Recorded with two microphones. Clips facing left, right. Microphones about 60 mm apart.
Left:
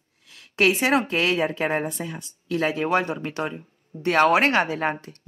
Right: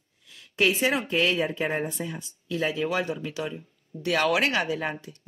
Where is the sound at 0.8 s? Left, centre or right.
Left.